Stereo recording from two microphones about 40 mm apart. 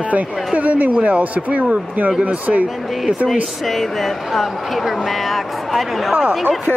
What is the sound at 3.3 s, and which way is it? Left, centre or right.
Speech, centre.